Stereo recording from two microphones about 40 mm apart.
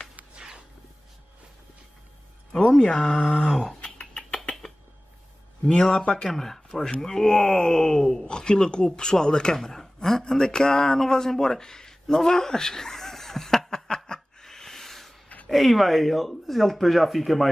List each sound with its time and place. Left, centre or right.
0.4 s a sound: right
2.8 s speech: centre
5.7 s speech: centre
6.2 s speech: centre
10.0 s a sound: centre
15.5 s speech: centre